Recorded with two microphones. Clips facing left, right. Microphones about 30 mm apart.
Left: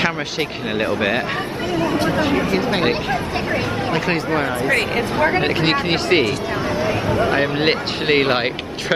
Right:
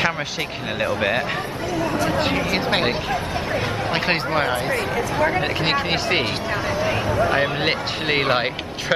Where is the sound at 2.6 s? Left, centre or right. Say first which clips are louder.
Left 1 dB; right.